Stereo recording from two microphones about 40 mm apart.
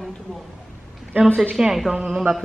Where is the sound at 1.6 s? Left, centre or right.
Centre.